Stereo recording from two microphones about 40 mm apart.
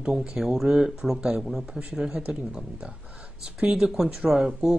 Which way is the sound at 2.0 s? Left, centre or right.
Centre.